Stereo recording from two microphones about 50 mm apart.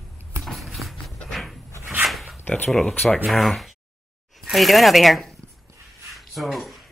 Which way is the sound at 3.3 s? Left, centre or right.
Centre.